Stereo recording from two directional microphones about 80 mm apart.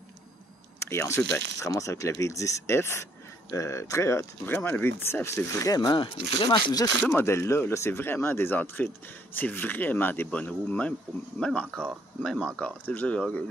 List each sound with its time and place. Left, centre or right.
0.7 s speech: left
5.9 s speech: left
7.1 s speech: left